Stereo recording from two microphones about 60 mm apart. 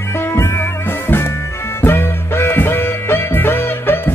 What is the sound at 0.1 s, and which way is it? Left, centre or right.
Music, left.